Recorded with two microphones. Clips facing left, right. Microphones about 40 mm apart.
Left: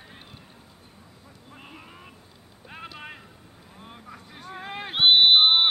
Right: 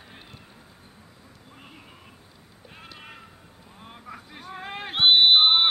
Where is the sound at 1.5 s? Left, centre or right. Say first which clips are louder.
Left 3 dB; centre.